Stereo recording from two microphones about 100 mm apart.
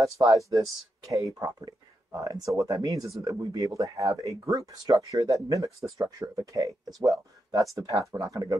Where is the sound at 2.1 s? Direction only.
35° right (ahead or behind).